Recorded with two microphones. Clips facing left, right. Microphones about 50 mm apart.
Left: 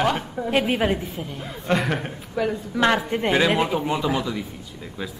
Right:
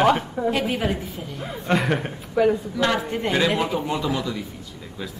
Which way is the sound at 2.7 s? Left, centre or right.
Left.